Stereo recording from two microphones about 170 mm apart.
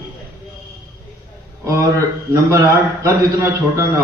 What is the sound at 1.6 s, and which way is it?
A man's voice, 20° right (ahead or behind).